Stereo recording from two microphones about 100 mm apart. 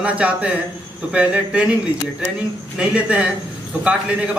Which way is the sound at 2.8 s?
10° right (ahead or behind).